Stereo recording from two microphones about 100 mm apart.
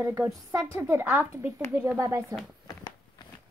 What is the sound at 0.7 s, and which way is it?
A woman's voice, 20° right (ahead or behind).